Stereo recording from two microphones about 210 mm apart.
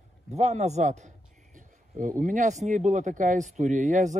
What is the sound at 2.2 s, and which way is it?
Speech, 40° right (ahead or behind).